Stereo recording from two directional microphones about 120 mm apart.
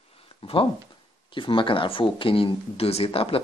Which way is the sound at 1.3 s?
45° left (ahead or behind).